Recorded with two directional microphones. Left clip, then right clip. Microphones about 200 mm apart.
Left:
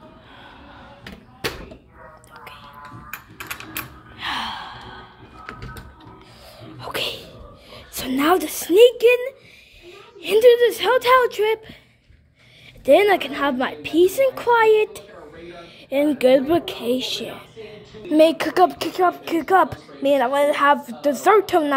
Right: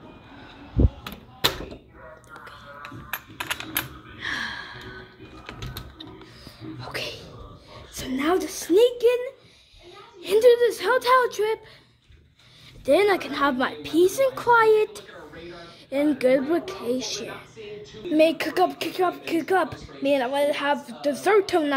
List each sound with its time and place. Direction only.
4.6 s gasp: 10° left (ahead or behind)
6.8 s whispering: 20° left (ahead or behind)
7.7 s a sound: 25° left (ahead or behind)
8.6 s a woman's voice: 20° left (ahead or behind)
12.8 s speech: 15° left (ahead or behind)